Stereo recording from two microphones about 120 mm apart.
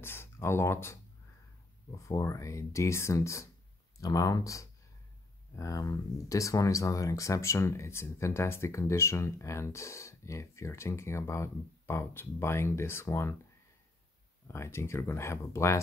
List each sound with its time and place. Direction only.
0.0 s speech: 20° left (ahead or behind)
14.5 s speech: 25° left (ahead or behind)